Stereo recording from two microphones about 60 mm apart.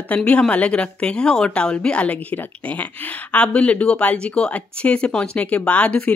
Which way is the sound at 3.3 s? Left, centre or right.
Left.